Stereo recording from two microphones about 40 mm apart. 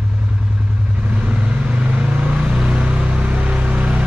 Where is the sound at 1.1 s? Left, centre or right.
Right.